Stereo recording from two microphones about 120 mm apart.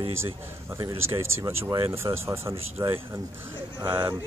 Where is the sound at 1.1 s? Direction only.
25° right (ahead or behind).